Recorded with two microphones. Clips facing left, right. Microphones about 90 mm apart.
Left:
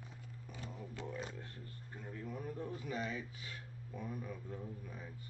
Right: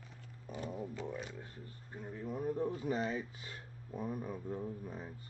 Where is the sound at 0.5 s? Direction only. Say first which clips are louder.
Right 8 dB; 40° right (ahead or behind).